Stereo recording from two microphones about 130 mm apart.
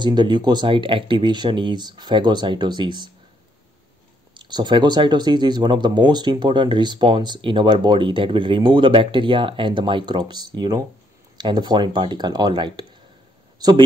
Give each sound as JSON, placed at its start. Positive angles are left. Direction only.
{"t": 0.0, "sound": "speech", "side_deg": -35}
{"t": 4.3, "sound": "speech", "side_deg": -35}